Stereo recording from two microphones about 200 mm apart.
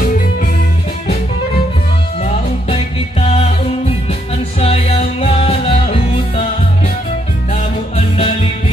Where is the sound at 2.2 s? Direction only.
30° left (ahead or behind).